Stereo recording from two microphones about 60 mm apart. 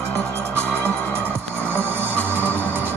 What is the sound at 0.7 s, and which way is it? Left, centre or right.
Music, left.